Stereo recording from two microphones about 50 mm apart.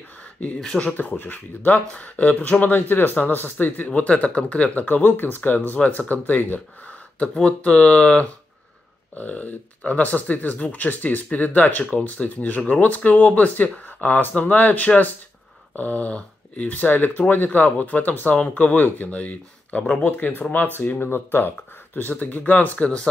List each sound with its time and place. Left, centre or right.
0.7 s speech: left
4.8 s speech: left
21.9 s speech: left